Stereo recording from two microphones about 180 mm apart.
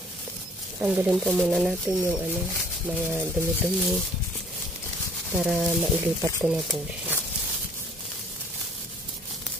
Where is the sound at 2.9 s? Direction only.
10° right (ahead or behind).